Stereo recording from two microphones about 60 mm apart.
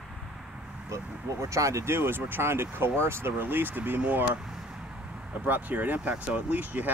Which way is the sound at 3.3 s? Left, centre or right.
Right.